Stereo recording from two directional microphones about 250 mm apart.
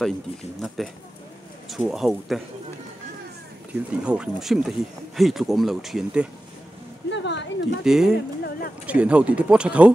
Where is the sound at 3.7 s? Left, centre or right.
Centre.